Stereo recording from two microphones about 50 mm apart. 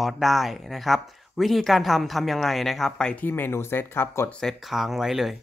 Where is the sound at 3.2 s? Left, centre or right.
Left.